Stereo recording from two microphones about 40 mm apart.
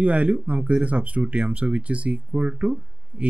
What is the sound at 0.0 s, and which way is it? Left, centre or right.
Speech, right.